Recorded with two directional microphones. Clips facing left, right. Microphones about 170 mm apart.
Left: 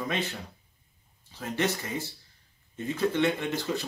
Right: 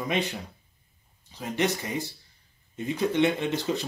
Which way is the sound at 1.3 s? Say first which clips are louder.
Right 2 dB; 15° right (ahead or behind).